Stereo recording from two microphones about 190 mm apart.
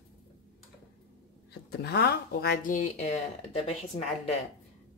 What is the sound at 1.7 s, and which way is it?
Speech, 60° left (ahead or behind).